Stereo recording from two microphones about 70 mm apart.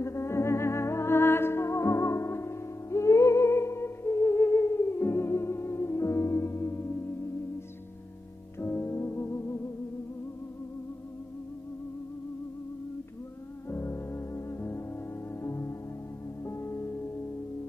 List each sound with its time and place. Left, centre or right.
0.0 s music: left
8.5 s keyboard: left
13.7 s music: left